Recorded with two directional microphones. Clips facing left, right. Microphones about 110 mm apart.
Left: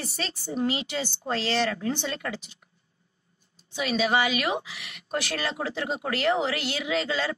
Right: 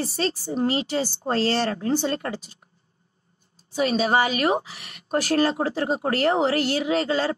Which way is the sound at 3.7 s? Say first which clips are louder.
Right 4 dB; 40° right (ahead or behind).